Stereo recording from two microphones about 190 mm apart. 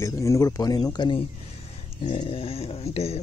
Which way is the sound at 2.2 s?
30° left (ahead or behind).